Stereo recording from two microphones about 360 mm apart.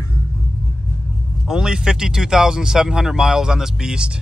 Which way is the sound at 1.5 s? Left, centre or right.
Centre.